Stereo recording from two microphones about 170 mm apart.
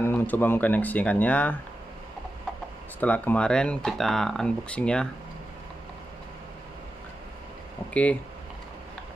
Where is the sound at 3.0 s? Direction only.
10° left (ahead or behind).